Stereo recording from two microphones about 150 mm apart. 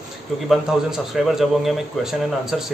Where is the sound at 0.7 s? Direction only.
5° right (ahead or behind).